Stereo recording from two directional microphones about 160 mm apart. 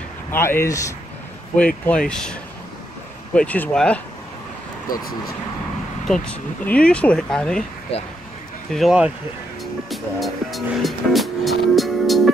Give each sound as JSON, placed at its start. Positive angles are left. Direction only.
{"t": 0.3, "sound": "speech", "side_deg": 15}
{"t": 1.9, "sound": "speech", "side_deg": 5}
{"t": 3.3, "sound": "speech", "side_deg": 10}
{"t": 6.0, "sound": "speech", "side_deg": 5}
{"t": 7.9, "sound": "speech", "side_deg": 40}
{"t": 8.7, "sound": "speech", "side_deg": -5}
{"t": 9.8, "sound": "music", "side_deg": 0}